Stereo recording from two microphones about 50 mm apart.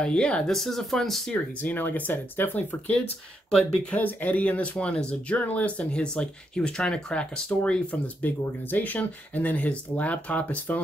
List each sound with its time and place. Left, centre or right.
0.0 s speech: centre
0.5 s speech: centre
1.3 s speech: left
3.4 s speech: centre
3.9 s speech: left
8.2 s speech: left